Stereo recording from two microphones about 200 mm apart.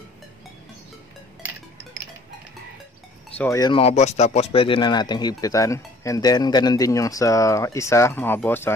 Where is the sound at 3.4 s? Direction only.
15° left (ahead or behind).